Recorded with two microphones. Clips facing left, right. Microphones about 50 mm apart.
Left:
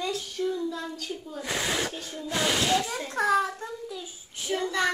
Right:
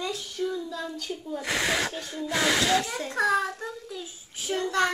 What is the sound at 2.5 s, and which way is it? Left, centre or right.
Speech, right.